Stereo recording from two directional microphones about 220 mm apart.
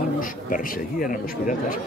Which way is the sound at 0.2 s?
40° left (ahead or behind).